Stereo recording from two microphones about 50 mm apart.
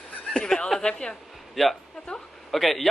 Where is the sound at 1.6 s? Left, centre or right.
Centre.